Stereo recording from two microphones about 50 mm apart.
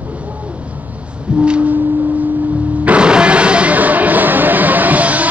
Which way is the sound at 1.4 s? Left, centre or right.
Right.